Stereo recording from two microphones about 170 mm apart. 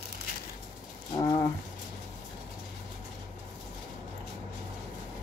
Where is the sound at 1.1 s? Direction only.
25° left (ahead or behind).